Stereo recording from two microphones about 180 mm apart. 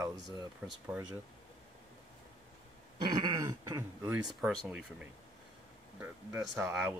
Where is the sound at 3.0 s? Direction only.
25° right (ahead or behind).